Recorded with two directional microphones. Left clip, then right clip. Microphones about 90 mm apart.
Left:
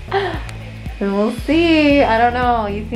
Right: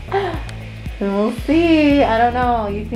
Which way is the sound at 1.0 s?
20° left (ahead or behind).